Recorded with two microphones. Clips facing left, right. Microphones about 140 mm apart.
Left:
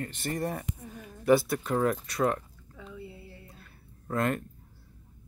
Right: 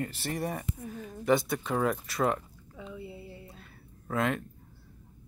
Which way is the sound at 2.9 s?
20° right (ahead or behind).